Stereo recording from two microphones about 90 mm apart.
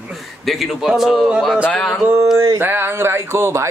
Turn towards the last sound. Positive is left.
turn(degrees=-30)  # may be behind; listen again after turning